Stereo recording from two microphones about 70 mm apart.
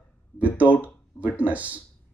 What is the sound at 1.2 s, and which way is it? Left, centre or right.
Speech, right.